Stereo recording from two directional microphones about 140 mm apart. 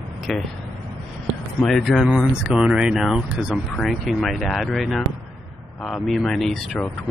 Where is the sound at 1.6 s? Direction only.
Centre (ahead or behind).